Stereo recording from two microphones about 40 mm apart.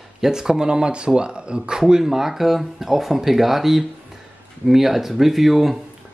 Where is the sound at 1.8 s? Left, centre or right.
Centre.